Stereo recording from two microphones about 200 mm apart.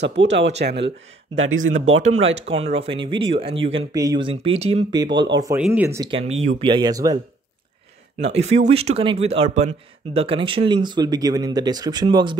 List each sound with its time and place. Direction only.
0.0 s speech: 60° right (ahead or behind); by 2.0 s 80° right
2.3 s speech: 30° right (ahead or behind); by 6.0 s 15° right (ahead or behind)
6.0 s speech: 30° right (ahead or behind)
8.4 s speech: 35° right (ahead or behind)